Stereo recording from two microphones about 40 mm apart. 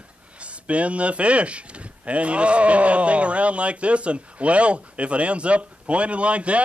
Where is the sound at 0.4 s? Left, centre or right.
Right.